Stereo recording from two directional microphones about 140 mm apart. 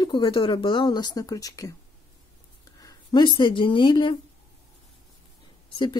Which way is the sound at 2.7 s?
30° left (ahead or behind).